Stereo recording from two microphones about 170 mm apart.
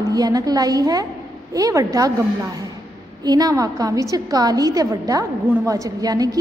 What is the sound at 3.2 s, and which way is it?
A woman's voice, 20° right (ahead or behind).